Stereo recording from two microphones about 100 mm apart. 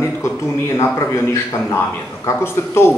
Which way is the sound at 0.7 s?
30° left (ahead or behind).